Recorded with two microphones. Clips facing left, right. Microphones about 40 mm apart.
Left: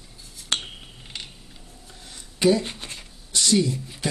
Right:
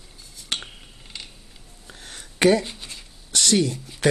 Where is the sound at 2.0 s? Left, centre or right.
Right.